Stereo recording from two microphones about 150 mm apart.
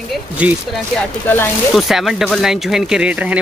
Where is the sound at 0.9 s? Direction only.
15° left (ahead or behind).